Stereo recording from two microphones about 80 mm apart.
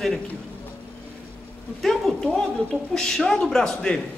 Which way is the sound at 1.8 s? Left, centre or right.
Centre.